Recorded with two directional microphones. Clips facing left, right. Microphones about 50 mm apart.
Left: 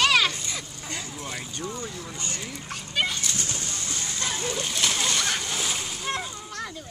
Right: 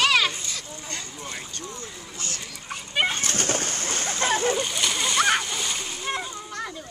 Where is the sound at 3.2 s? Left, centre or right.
Right.